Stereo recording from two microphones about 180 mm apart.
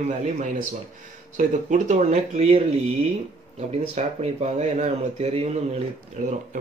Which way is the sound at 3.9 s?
40° right (ahead or behind).